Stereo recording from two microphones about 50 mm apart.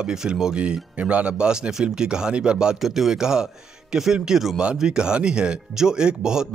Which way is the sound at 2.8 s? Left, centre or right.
Centre.